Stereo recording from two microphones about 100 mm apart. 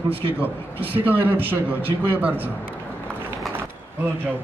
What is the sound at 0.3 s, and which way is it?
A man's voice, 20° right (ahead or behind).